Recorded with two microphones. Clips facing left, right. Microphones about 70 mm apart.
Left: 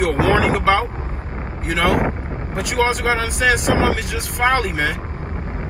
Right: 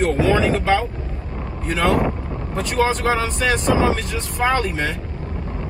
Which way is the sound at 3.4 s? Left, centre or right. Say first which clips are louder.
Left 2 dB; left.